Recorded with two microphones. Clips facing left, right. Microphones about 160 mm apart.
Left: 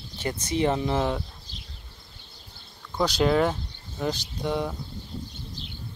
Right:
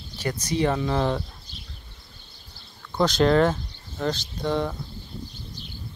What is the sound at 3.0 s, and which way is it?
Speech, 10° left (ahead or behind).